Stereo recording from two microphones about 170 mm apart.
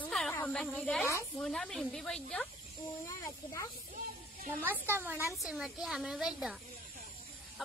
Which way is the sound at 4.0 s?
55° right (ahead or behind).